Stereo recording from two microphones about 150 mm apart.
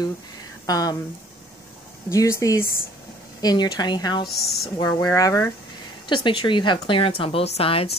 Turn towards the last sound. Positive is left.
turn(degrees=40)  # may be behind; listen again after turning